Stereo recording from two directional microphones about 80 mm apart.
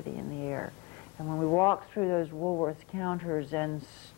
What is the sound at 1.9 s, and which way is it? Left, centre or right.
A woman's voice, left.